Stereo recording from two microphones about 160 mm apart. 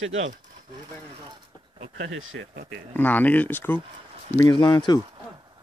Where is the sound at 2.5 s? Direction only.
75° right (ahead or behind).